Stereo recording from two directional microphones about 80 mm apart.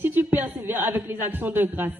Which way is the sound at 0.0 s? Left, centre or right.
Right.